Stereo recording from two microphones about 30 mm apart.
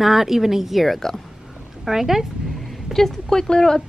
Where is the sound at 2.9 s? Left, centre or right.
Centre.